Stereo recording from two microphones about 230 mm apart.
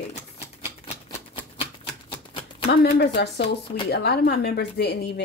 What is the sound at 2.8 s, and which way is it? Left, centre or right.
A woman's voice, left.